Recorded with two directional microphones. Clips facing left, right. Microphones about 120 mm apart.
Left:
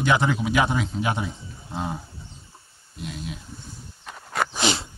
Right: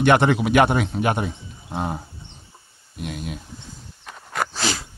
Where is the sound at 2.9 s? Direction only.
55° right (ahead or behind).